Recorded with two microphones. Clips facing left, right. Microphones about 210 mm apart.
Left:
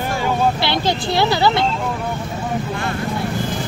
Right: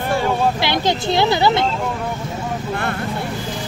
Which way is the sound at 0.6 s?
20° right (ahead or behind).